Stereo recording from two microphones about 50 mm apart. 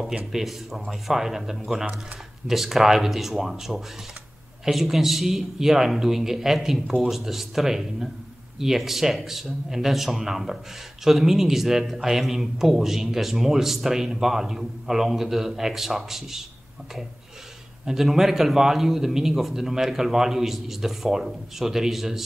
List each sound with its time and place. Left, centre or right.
0.2 s a man's voice: centre
17.8 s speech: centre